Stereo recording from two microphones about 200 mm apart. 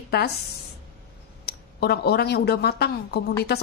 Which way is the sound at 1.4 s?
50° left (ahead or behind).